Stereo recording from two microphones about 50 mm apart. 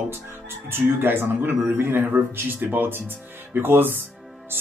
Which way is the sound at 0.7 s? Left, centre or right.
Right.